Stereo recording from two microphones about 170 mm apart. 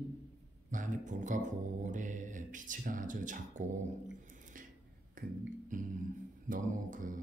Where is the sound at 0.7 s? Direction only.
50° right (ahead or behind).